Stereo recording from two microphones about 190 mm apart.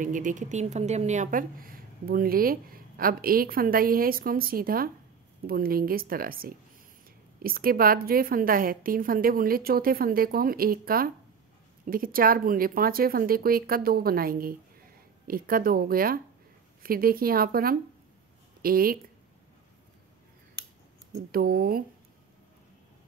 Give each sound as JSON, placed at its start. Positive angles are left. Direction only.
{"t": 0.0, "sound": "a woman's voice", "side_deg": -45}
{"t": 21.3, "sound": "a woman's voice", "side_deg": -50}